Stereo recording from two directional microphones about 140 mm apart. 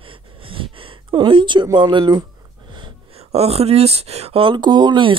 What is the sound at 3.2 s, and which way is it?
Speech, 45° right (ahead or behind).